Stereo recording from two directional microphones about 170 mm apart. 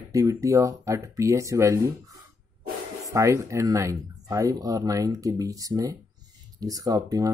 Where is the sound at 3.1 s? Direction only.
20° right (ahead or behind).